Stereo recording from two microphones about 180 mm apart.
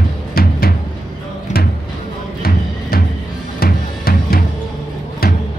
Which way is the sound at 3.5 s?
55° left (ahead or behind).